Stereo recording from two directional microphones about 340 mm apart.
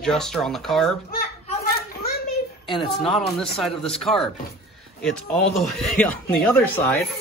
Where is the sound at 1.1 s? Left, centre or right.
Left.